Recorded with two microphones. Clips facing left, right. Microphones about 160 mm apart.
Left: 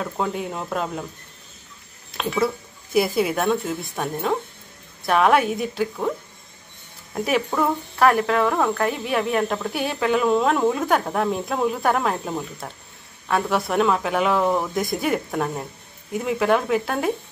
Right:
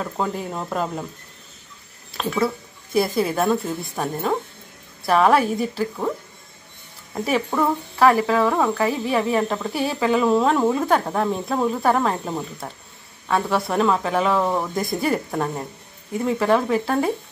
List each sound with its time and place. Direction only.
0.0 s speech: centre (ahead or behind)
2.1 s speech: centre (ahead or behind)
7.2 s speech: centre (ahead or behind)